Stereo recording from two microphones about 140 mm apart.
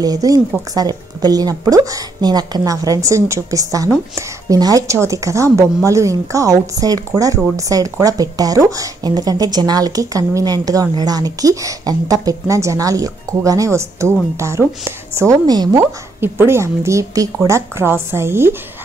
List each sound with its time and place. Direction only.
0.0 s speech: 25° right (ahead or behind)
15.8 s speech: 15° right (ahead or behind)